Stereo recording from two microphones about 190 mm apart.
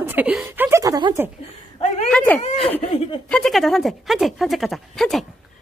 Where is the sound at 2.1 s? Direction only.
10° left (ahead or behind).